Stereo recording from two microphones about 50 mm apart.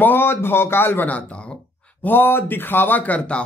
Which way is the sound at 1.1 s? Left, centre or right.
Left.